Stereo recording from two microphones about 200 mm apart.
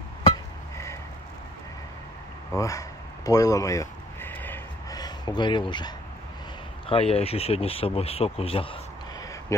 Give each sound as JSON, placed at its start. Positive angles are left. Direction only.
{"t": 2.5, "sound": "speech", "side_deg": 15}
{"t": 3.3, "sound": "a sound", "side_deg": 15}
{"t": 6.9, "sound": "speech", "side_deg": 30}
{"t": 9.5, "sound": "speech", "side_deg": 15}